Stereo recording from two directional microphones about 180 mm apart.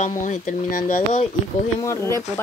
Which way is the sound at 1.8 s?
15° left (ahead or behind).